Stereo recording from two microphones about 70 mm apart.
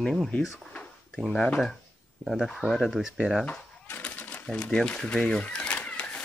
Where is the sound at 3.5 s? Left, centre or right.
Left.